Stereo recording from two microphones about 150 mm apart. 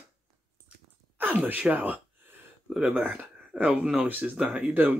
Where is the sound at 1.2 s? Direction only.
10° right (ahead or behind).